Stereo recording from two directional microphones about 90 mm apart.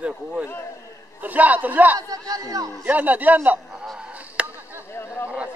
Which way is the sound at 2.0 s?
45° right (ahead or behind).